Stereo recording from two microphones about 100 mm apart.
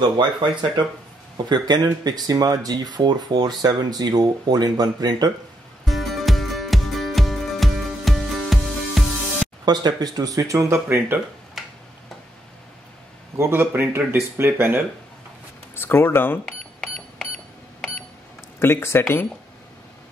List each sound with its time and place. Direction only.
0.0 s speech: 50° right (ahead or behind)
5.9 s music: centre (ahead or behind)
9.7 s speech: 45° right (ahead or behind); by 11.1 s 25° right (ahead or behind)
11.6 s tick-tock: centre (ahead or behind)
13.4 s speech: 20° right (ahead or behind)
15.7 s speech: 20° left (ahead or behind)
16.4 s a sound: 5° left (ahead or behind)
18.6 s speech: 25° left (ahead or behind)